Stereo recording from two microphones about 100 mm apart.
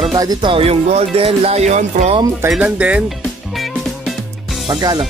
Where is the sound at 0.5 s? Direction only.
75° right (ahead or behind).